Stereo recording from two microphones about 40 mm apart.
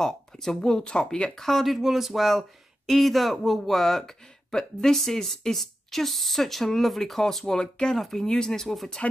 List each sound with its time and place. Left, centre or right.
0.0 s speech: centre
1.4 s speech: centre
1.8 s speech: centre